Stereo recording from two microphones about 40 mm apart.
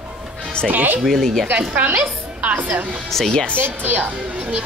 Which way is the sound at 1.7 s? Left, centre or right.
Right.